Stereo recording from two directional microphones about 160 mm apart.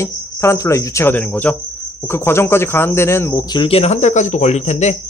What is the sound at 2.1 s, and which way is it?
A man's voice, 15° left (ahead or behind).